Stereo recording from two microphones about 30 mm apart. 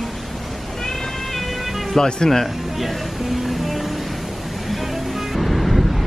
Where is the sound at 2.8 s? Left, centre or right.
Centre.